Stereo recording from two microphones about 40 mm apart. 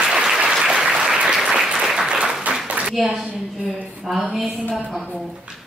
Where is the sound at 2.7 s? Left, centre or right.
Right.